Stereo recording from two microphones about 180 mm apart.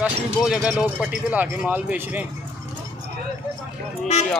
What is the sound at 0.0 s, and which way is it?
Speech, 5° right (ahead or behind).